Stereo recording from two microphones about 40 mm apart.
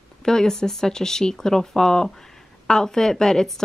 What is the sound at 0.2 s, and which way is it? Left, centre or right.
Speech, centre.